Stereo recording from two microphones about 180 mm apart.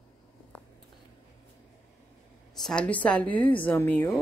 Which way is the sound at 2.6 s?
5° left (ahead or behind).